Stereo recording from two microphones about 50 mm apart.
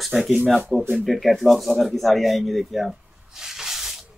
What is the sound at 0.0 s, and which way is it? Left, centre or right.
Speech, centre.